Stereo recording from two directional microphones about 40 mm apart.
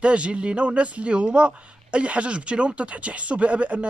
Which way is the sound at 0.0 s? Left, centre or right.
Right.